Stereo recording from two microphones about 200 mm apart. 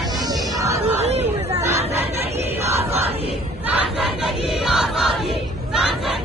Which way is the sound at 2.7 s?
30° right (ahead or behind).